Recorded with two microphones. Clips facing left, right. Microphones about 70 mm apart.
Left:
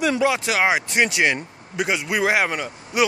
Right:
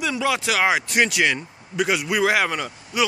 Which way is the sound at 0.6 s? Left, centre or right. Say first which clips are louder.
Even; centre.